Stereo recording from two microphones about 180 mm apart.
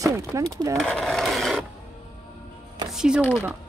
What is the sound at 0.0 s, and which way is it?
Speech, 20° right (ahead or behind).